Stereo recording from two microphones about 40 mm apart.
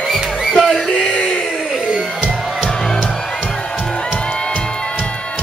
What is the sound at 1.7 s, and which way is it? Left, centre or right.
Music, centre.